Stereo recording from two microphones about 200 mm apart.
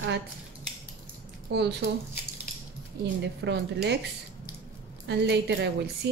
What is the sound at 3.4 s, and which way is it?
Speech, 60° right (ahead or behind).